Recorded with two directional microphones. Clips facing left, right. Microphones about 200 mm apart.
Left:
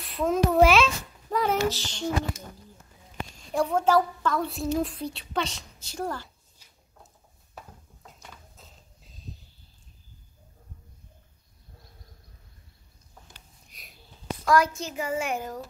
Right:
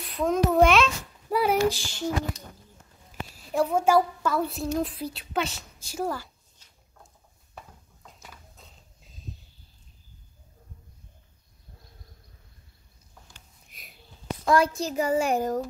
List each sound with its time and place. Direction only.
0.0 s a child's voice: centre (ahead or behind)
1.3 s child singing: 10° right (ahead or behind)
3.1 s a woman's voice: 5° right (ahead or behind)
7.5 s a sound: centre (ahead or behind)
13.7 s sniff: centre (ahead or behind)
14.4 s speech: 25° right (ahead or behind)